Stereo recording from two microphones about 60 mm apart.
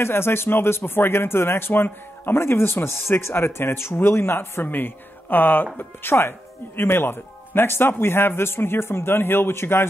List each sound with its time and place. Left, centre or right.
0.0 s speech: left